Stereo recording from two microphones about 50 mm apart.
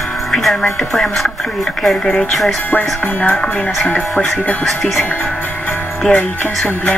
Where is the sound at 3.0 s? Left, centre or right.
Left.